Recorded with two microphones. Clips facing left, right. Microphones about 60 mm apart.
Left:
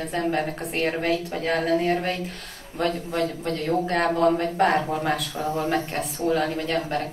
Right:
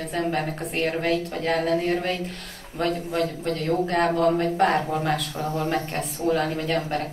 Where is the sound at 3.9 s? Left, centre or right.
Centre.